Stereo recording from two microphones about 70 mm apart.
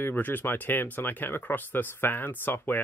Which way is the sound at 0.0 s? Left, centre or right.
Left.